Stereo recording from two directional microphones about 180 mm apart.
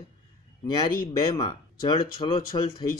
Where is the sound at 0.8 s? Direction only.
25° left (ahead or behind).